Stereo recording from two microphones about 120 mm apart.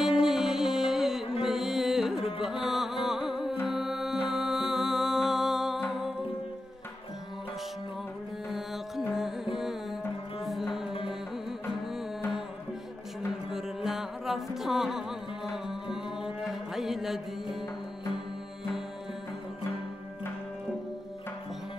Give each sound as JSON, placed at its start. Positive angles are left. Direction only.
{"t": 0.2, "sound": "music", "side_deg": -5}
{"t": 2.2, "sound": "music", "side_deg": 50}
{"t": 2.5, "sound": "music", "side_deg": 0}
{"t": 8.5, "sound": "music", "side_deg": 0}
{"t": 13.5, "sound": "music", "side_deg": -5}